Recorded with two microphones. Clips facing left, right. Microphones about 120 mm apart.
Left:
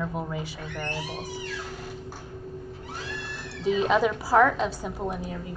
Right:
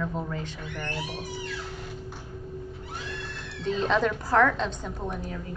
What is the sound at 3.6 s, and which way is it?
A woman's voice, 10° left (ahead or behind).